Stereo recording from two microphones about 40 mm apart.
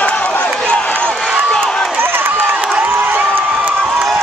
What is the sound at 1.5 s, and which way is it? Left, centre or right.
Run, centre.